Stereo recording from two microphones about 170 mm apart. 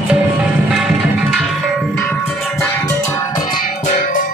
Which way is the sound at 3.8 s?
50° left (ahead or behind).